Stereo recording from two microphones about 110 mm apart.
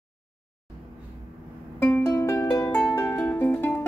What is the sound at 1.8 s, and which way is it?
Music, 15° left (ahead or behind).